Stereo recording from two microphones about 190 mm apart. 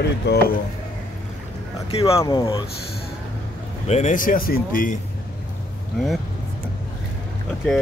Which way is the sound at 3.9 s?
35° left (ahead or behind).